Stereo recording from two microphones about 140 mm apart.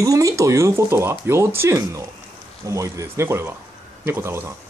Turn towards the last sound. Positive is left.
turn(degrees=-20)  # may be behind; listen again after turning